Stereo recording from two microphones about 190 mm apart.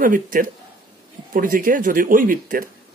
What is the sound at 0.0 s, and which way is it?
Speech, 45° right (ahead or behind).